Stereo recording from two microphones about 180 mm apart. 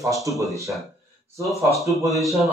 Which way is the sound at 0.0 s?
15° right (ahead or behind).